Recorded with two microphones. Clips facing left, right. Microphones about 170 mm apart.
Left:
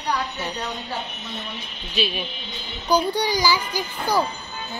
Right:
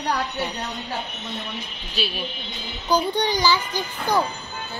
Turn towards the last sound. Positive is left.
turn(degrees=10)  # may be behind; listen again after turning